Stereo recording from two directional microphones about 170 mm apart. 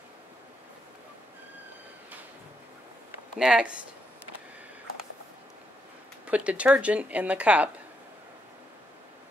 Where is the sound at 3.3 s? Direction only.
5° right (ahead or behind).